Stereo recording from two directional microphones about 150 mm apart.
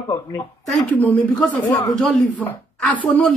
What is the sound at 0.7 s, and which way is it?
Speech, 10° left (ahead or behind).